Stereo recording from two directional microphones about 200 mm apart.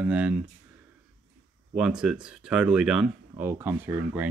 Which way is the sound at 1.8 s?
5° right (ahead or behind).